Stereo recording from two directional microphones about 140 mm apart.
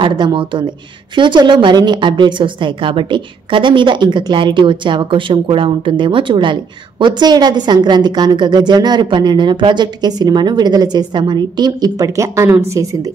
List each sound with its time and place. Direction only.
0.0 s a woman's voice: 35° right (ahead or behind)